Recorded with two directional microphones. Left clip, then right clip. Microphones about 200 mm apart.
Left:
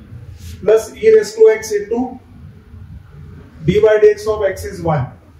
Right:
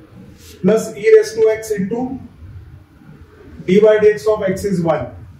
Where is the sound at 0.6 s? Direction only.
15° right (ahead or behind).